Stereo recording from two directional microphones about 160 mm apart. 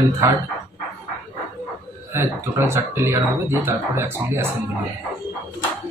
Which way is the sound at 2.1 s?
15° right (ahead or behind).